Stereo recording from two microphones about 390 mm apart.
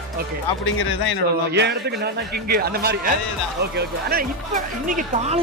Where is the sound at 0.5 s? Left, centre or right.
Left.